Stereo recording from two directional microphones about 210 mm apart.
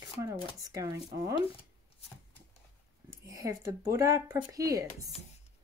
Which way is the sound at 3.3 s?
15° right (ahead or behind).